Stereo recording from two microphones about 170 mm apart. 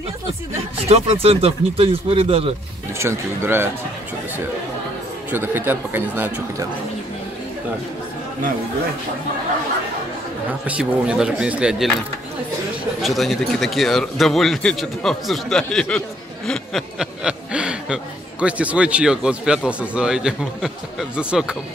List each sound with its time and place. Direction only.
0.3 s speech: 35° right (ahead or behind)
3.0 s speech: 15° right (ahead or behind)
5.3 s speech: 10° right (ahead or behind)
10.8 s speech: 5° right (ahead or behind)
13.0 s speech: centre (ahead or behind)